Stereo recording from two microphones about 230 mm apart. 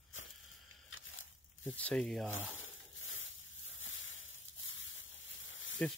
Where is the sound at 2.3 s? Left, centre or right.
Left.